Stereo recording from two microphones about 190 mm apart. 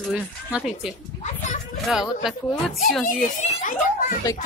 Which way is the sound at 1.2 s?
40° left (ahead or behind).